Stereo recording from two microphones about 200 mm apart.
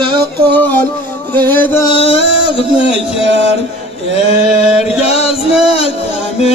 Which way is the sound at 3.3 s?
30° left (ahead or behind).